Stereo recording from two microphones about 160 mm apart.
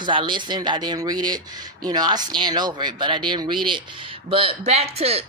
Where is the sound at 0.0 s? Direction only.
30° right (ahead or behind).